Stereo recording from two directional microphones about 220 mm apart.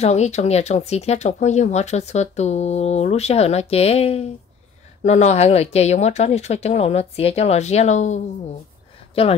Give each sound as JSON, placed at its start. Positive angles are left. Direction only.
{"t": 0.0, "sound": "speech", "side_deg": 30}